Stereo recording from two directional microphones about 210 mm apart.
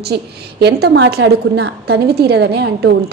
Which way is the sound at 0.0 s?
50° right (ahead or behind).